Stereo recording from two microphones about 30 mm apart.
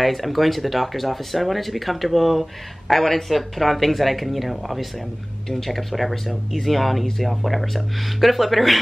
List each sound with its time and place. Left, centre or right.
0.0 s speech: centre